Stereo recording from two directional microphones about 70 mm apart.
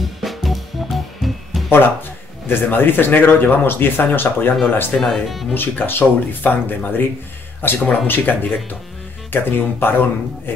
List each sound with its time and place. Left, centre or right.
0.0 s music: centre
2.4 s speech: left
4.9 s speech: centre
5.5 s speech: left